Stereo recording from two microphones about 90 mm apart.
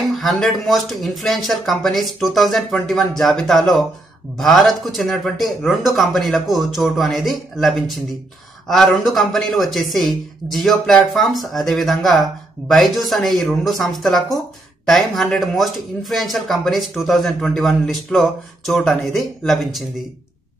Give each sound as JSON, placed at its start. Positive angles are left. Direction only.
{"t": 0.1, "sound": "speech", "side_deg": 0}